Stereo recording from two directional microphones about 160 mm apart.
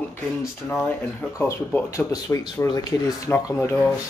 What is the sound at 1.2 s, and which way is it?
Speech, 15° left (ahead or behind).